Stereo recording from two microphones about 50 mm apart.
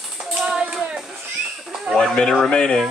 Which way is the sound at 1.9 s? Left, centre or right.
Centre.